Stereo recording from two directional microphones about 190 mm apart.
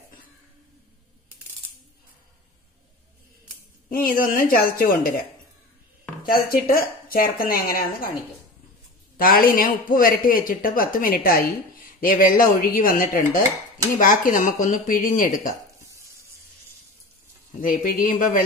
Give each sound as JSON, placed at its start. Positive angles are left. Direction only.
{"t": 3.9, "sound": "speech", "side_deg": 50}
{"t": 6.2, "sound": "speech", "side_deg": 50}
{"t": 9.1, "sound": "speech", "side_deg": 50}
{"t": 17.5, "sound": "speech", "side_deg": 45}